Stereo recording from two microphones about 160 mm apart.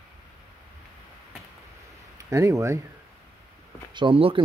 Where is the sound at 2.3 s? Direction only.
20° right (ahead or behind).